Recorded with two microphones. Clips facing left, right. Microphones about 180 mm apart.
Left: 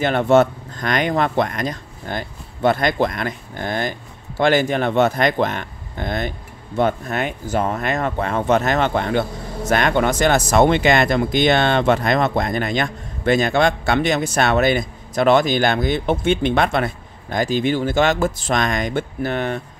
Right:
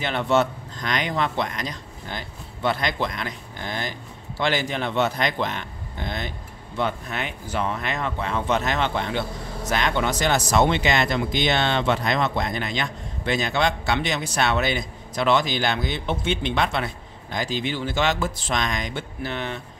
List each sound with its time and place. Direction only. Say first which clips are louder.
0.0 s speech: left 7 dB; 50° left (ahead or behind)